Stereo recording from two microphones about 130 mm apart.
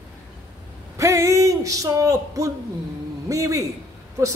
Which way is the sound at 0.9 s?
25° right (ahead or behind).